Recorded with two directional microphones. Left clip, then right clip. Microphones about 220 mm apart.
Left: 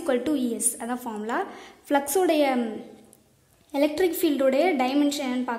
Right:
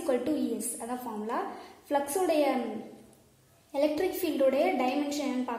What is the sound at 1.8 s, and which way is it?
Speech, 45° left (ahead or behind).